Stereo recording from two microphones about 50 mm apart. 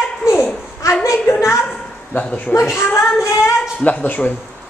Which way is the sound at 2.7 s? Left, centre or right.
Left.